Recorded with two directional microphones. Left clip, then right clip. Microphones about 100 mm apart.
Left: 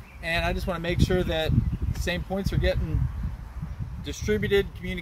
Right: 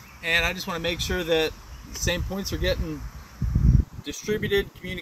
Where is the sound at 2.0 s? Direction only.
35° left (ahead or behind).